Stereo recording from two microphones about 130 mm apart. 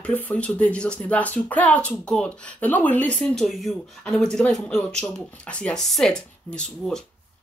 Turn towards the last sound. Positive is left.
turn(degrees=5)  # may be behind; listen again after turning